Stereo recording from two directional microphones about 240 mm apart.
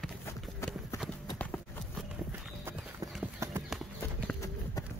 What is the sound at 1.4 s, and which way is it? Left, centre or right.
Clip-clop, centre.